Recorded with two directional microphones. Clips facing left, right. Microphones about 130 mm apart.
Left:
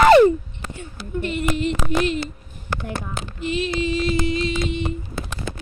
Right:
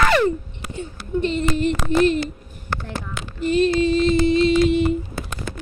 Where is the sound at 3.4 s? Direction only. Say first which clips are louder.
Right 7 dB; 45° right (ahead or behind).